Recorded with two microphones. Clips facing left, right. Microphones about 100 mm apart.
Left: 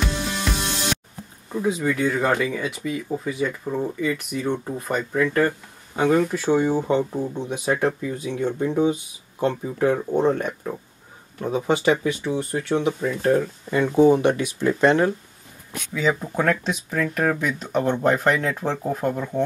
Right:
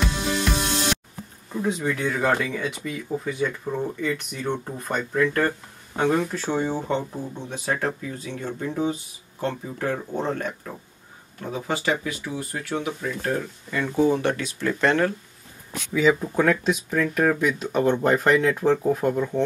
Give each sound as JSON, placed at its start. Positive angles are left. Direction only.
{"t": 0.5, "sound": "music", "side_deg": 0}
{"t": 1.5, "sound": "speech", "side_deg": 5}
{"t": 15.9, "sound": "speech", "side_deg": 0}